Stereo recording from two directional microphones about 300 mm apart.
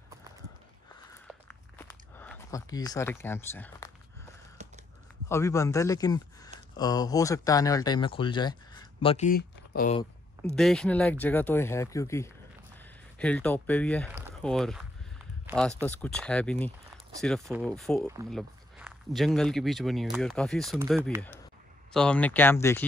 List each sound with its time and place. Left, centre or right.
1.2 s walk: centre
4.6 s a sound: right
5.3 s a man's voice: centre; by 9.9 s left
10.5 s speech: centre
14.1 s a sound: centre
15.8 s speech: centre